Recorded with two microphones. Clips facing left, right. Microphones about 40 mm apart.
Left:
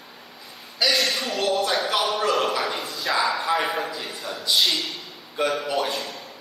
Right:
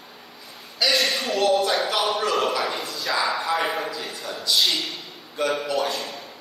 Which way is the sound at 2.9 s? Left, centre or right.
Centre.